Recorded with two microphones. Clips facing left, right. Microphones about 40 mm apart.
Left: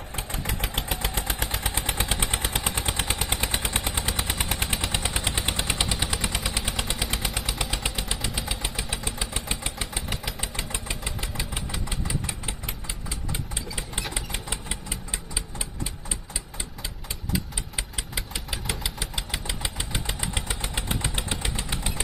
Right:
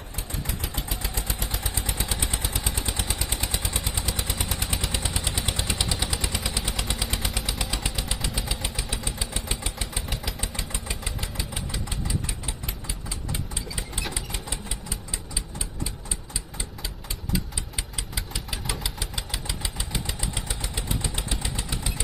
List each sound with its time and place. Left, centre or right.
0.1 s vehicle: left
5.9 s vehicle: left
6.4 s vehicle: centre
10.0 s engine: centre
14.1 s engine: left
17.3 s engine: centre
19.4 s engine: left